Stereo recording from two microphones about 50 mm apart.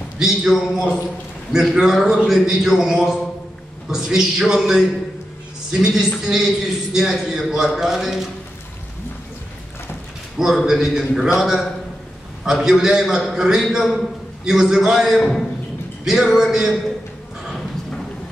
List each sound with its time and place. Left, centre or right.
0.2 s a man's voice: centre
10.4 s a man's voice: centre